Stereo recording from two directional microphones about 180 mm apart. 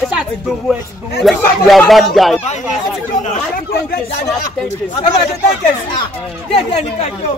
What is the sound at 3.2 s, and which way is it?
Chatter, 45° left (ahead or behind).